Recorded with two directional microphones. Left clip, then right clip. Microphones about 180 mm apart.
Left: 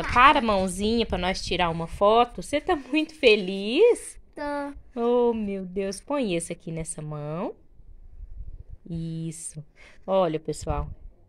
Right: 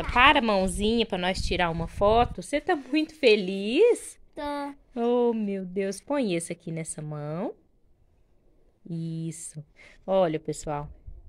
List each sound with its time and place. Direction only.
0.1 s a woman's voice: 10° right (ahead or behind)
8.8 s a woman's voice: 10° right (ahead or behind)